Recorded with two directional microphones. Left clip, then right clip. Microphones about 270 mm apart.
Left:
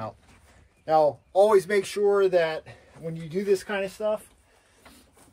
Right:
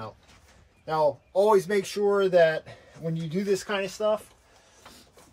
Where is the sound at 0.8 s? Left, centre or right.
Centre.